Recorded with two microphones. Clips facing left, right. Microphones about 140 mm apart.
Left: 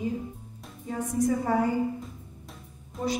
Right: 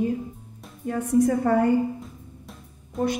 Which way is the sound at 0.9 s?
65° right (ahead or behind).